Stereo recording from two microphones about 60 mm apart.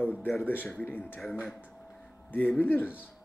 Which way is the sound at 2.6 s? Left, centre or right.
Left.